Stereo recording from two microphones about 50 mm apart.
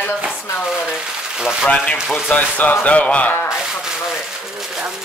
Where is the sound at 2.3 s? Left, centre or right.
Left.